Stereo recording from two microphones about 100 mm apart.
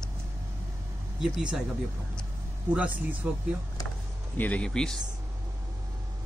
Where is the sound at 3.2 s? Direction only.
10° right (ahead or behind).